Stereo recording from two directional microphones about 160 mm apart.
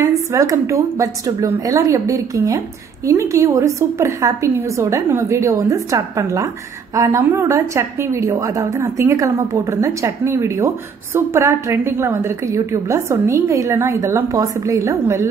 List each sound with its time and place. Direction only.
0.3 s a woman's voice: 20° right (ahead or behind)